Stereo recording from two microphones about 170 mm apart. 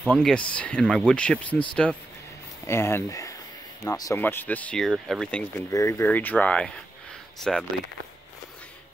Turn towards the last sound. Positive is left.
turn(degrees=5)  # may be behind; listen again after turning